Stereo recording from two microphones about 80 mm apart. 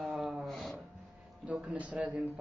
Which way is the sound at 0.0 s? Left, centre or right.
Centre.